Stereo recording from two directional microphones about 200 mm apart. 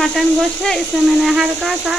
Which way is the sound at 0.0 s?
Centre (ahead or behind).